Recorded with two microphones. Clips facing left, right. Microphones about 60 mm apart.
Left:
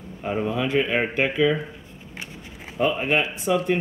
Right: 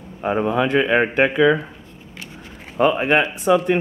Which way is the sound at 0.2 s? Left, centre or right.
Right.